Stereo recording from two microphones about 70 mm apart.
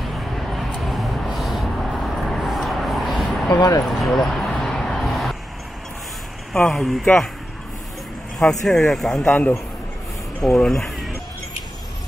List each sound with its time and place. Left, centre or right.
0.0 s vehicle: centre
3.4 s speech: left
3.8 s a sound: centre
6.7 s speech: centre
8.4 s speech: centre
10.4 s speech: centre